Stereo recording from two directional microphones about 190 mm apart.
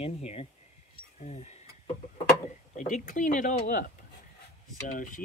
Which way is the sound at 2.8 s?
40° left (ahead or behind).